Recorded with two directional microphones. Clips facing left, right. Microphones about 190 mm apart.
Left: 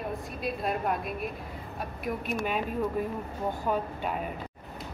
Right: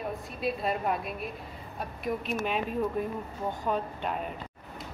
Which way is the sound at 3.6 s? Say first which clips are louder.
Even; 5° left (ahead or behind).